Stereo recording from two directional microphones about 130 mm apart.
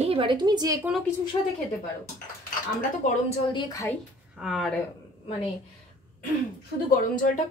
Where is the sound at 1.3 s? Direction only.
35° left (ahead or behind).